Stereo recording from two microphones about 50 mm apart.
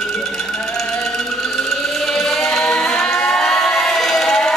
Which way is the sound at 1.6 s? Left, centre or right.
Centre.